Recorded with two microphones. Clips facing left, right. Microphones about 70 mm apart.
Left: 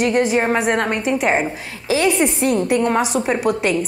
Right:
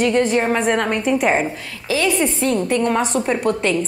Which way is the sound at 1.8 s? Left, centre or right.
Left.